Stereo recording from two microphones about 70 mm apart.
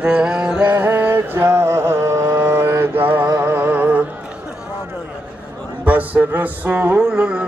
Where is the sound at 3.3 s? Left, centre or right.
Right.